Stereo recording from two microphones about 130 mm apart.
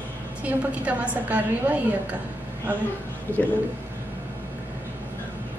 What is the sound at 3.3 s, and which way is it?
Speech, 15° right (ahead or behind).